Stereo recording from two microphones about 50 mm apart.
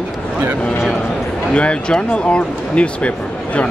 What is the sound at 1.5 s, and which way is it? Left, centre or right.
Speech, left.